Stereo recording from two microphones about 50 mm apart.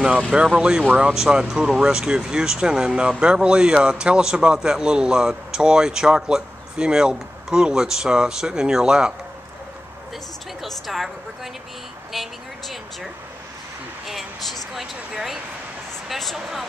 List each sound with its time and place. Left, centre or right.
0.5 s speech: centre
10.6 s a woman's voice: centre
12.1 s vehicle: centre
14.0 s a sound: centre
16.1 s speech: centre